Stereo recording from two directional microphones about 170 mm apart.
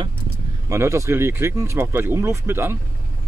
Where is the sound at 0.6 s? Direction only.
15° right (ahead or behind).